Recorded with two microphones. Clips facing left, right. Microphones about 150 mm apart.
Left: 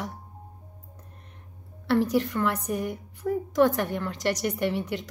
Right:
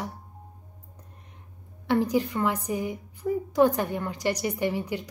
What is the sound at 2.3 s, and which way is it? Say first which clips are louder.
Speech: even; 15° right (ahead or behind).